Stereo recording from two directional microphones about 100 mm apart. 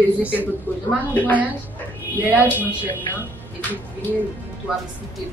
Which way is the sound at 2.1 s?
15° right (ahead or behind).